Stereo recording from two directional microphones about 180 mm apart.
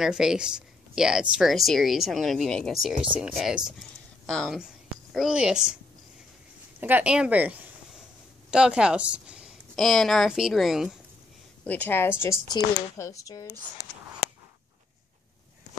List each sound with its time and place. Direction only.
0.0 s a woman's voice: 5° right (ahead or behind)
6.8 s a woman's voice: 10° right (ahead or behind)
11.6 s a woman's voice: 10° left (ahead or behind)